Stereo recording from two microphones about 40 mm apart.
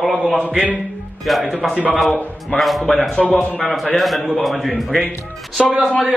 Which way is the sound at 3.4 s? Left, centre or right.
Left.